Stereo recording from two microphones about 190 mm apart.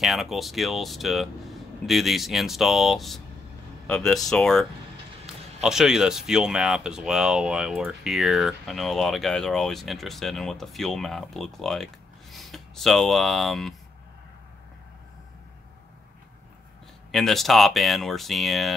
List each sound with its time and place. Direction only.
0.0 s speech: centre (ahead or behind)
17.1 s speech: centre (ahead or behind)